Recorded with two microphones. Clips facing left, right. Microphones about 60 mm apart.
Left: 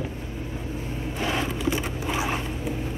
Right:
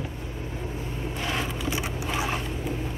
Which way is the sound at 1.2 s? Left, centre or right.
Centre.